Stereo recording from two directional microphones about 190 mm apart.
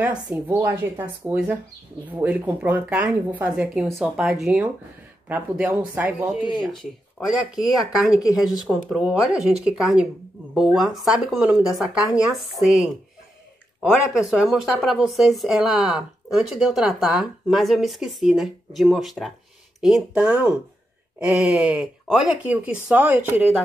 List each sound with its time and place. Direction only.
0.0 s speech: 5° right (ahead or behind)